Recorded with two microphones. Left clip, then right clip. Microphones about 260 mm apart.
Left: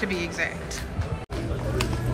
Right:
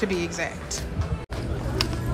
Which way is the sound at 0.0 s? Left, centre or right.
Centre.